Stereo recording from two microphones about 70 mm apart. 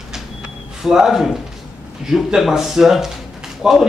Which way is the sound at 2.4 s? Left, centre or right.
Centre.